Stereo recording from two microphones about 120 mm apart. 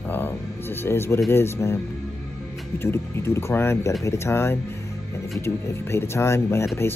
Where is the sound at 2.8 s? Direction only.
20° left (ahead or behind).